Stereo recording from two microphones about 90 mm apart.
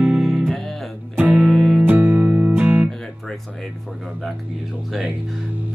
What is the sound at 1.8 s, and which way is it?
Music, 15° right (ahead or behind).